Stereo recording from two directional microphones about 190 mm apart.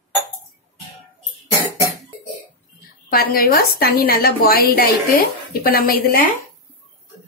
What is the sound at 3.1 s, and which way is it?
A woman's voice, 50° left (ahead or behind).